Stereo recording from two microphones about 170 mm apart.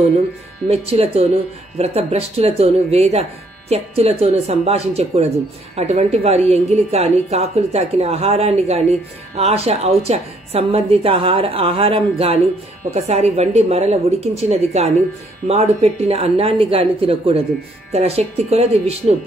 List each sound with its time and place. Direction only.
0.7 s speech: 35° right (ahead or behind)